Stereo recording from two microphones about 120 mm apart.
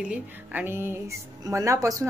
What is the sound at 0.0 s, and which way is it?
Speech, 10° right (ahead or behind).